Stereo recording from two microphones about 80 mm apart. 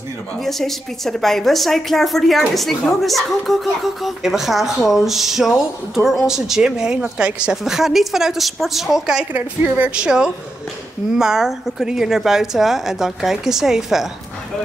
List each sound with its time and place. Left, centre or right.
0.4 s a woman's voice: centre
9.3 s a woman's voice: right; by 14.0 s centre